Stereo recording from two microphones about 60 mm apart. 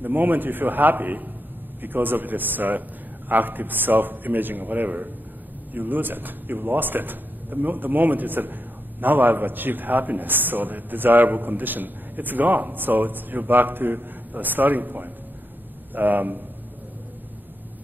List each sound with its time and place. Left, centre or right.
0.0 s a man's voice: right